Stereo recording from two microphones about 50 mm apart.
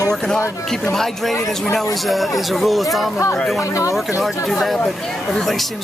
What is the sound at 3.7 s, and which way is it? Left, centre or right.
Speech, left.